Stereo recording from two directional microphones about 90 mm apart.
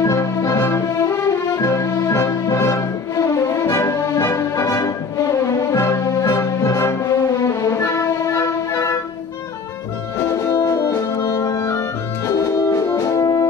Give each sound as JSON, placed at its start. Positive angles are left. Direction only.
{"t": 0.0, "sound": "music", "side_deg": 35}
{"t": 10.1, "sound": "brass instrument", "side_deg": 35}